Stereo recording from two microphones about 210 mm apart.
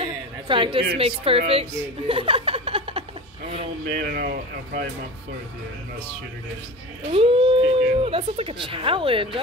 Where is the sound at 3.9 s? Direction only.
45° right (ahead or behind).